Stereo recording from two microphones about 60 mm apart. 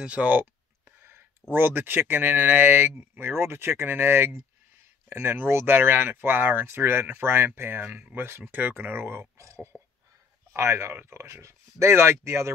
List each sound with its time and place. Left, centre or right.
0.0 s a sound: right
1.5 s speech: right
9.4 s speech: right